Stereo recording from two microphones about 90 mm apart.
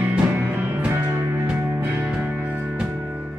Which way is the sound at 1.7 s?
30° right (ahead or behind).